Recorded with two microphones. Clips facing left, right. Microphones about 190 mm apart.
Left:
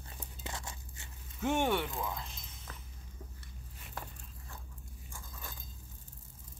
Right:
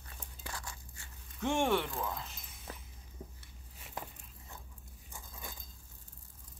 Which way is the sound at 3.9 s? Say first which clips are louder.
Right 1 dB; 20° right (ahead or behind).